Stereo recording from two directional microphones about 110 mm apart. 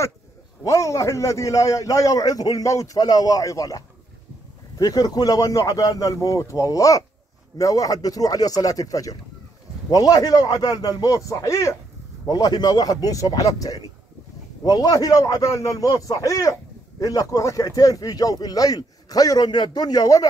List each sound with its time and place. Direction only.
0.7 s a man's voice: 30° left (ahead or behind)
12.3 s speech: 40° left (ahead or behind)